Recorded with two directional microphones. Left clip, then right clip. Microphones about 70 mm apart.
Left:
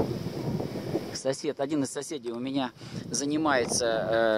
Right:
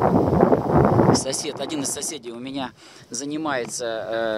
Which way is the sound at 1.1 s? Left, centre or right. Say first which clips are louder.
Right 6 dB; right.